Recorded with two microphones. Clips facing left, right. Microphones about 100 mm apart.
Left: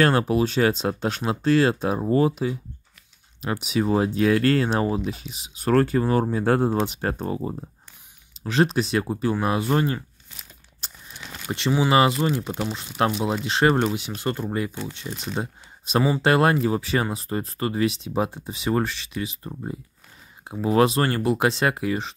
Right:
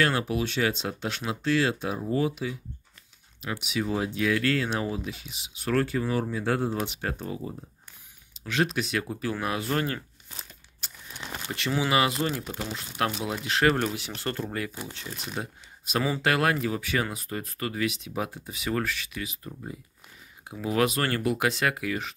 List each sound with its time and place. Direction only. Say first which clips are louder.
0.0 s speech: left 6 dB; 45° left (ahead or behind)
8.5 s speech: left 6 dB; 35° left (ahead or behind)
10.8 s a sound: left 3 dB; 25° left (ahead or behind)
11.5 s speech: left 6 dB; 20° left (ahead or behind)